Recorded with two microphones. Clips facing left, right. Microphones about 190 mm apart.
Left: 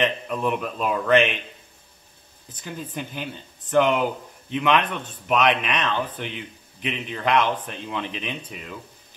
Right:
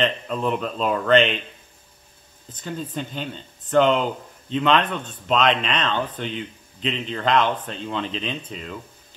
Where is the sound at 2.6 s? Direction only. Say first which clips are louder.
Right 3 dB; 10° left (ahead or behind).